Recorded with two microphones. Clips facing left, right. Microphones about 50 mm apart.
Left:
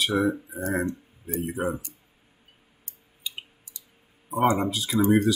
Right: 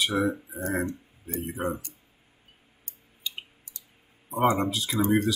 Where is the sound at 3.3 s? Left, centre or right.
Centre.